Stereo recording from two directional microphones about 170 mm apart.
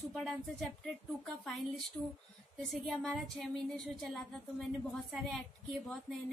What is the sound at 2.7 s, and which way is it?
Speech, 5° left (ahead or behind).